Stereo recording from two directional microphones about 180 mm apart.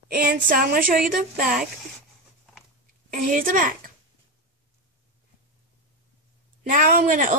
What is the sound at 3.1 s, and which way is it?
Speech, 45° right (ahead or behind).